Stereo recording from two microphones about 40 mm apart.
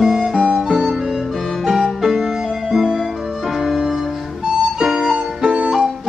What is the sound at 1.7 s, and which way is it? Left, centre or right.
Music, centre.